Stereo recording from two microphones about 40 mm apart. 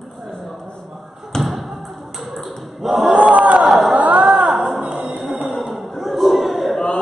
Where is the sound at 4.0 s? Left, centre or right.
Right.